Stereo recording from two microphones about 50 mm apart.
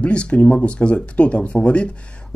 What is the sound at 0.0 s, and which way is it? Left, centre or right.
Speech, left.